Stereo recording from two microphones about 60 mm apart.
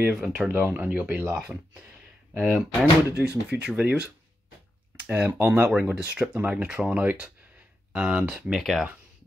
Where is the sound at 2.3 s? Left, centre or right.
Right.